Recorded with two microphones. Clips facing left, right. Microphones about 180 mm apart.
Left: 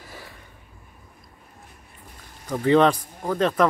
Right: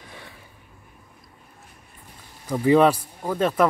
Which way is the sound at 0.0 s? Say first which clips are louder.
Left 1 dB; 5° left (ahead or behind).